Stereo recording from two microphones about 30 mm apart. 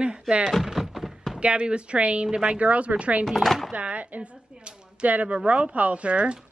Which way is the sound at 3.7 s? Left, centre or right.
Right.